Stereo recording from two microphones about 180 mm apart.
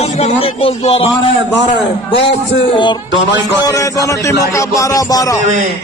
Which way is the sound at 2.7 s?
25° left (ahead or behind).